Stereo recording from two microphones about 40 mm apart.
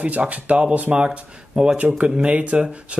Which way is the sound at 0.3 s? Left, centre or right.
Right.